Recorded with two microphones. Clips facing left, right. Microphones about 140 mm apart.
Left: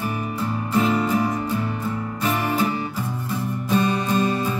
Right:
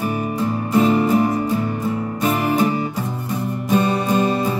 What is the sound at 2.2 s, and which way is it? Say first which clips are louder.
Music: right 4 dB; 20° right (ahead or behind).